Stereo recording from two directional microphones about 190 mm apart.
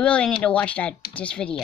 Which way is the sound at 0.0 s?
5° left (ahead or behind).